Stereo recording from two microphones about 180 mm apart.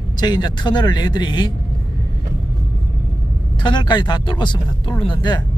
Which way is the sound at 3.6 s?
25° left (ahead or behind).